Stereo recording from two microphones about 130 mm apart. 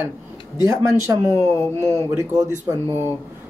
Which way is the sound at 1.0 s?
20° right (ahead or behind).